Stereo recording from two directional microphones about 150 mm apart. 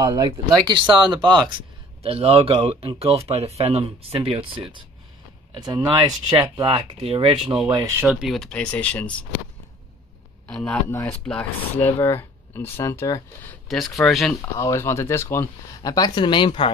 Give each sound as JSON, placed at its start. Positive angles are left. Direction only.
{"t": 0.0, "sound": "speech", "side_deg": -25}
{"t": 2.0, "sound": "speech", "side_deg": -40}
{"t": 5.5, "sound": "speech", "side_deg": -25}
{"t": 7.4, "sound": "speech", "side_deg": -5}
{"t": 10.4, "sound": "a man's voice", "side_deg": 5}
{"t": 10.9, "sound": "speech", "side_deg": 15}
{"t": 13.7, "sound": "speech", "side_deg": 0}
{"t": 14.4, "sound": "speech", "side_deg": 20}